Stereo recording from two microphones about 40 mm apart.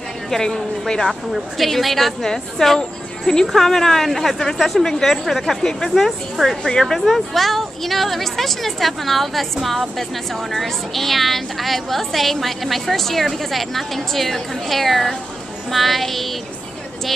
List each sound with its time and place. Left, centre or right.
0.3 s a woman's voice: centre
1.3 s a woman's voice: centre
6.6 s a woman's voice: centre
7.0 s a woman's voice: centre